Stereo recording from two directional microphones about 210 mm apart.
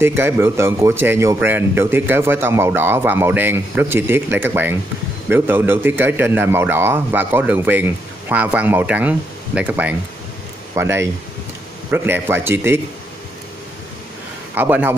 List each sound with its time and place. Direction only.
0.0 s a man's voice: 10° right (ahead or behind)
14.5 s a man's voice: 10° right (ahead or behind)